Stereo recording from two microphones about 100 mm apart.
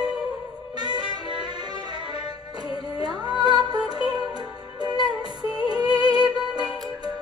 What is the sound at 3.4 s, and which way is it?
Music, 45° right (ahead or behind).